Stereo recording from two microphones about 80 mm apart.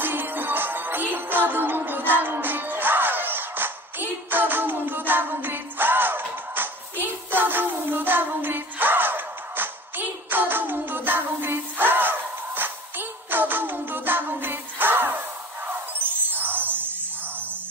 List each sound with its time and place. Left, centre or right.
0.0 s music: right